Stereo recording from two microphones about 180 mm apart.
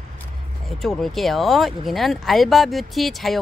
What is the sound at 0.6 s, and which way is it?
Speech, centre (ahead or behind).